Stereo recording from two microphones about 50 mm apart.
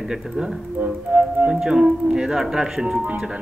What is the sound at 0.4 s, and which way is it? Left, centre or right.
Speech, centre.